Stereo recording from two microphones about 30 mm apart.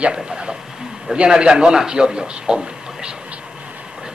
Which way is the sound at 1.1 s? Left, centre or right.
Right.